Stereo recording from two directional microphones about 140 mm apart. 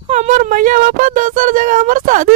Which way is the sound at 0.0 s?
55° right (ahead or behind).